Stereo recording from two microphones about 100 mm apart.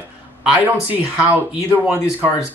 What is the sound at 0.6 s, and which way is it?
Speech, 15° right (ahead or behind).